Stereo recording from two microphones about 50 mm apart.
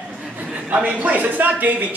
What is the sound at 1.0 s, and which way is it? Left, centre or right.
Speech, right.